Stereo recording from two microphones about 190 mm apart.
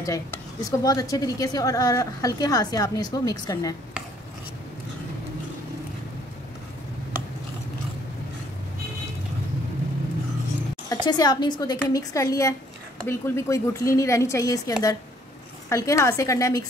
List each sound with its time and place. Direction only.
0.0 s speech: 15° left (ahead or behind)
10.9 s a woman's voice: 20° left (ahead or behind)